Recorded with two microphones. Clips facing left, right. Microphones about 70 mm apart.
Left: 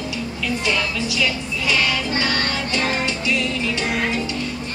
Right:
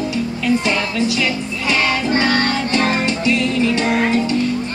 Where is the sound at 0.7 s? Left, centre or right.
Right.